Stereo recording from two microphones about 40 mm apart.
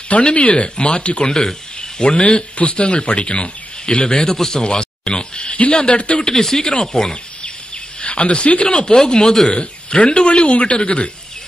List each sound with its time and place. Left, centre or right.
0.1 s a man's voice: left
6.2 s speech: centre
7.0 s a sound: centre
8.0 s a man's voice: left
9.5 s a man's voice: left